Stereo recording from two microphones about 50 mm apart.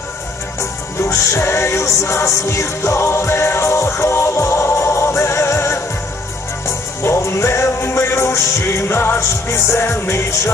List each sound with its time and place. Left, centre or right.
0.6 s music: left
7.0 s music: left